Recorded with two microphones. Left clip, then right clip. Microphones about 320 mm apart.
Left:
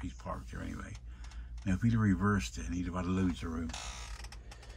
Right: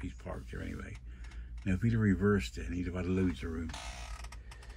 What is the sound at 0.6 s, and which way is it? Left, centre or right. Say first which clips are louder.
Speech: even; left.